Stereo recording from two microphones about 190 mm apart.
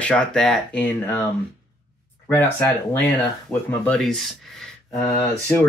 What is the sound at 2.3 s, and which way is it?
Speech, 10° left (ahead or behind).